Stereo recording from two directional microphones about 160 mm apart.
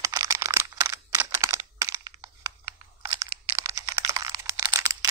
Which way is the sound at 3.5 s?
20° right (ahead or behind).